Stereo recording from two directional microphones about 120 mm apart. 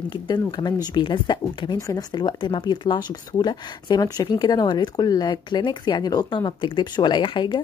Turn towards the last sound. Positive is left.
turn(degrees=40)  # may be behind; listen again after turning